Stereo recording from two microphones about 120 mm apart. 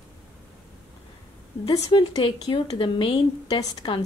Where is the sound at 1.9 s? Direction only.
40° left (ahead or behind).